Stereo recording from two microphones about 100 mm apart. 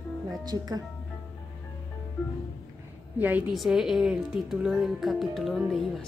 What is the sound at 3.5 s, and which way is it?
Speech, 5° right (ahead or behind).